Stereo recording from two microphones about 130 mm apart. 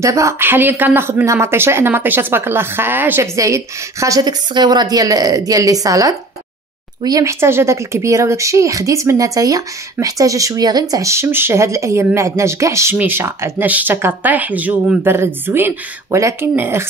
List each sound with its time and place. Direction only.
0.0 s speech: 25° right (ahead or behind)